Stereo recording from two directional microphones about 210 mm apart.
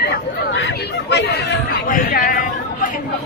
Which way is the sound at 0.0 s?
50° left (ahead or behind).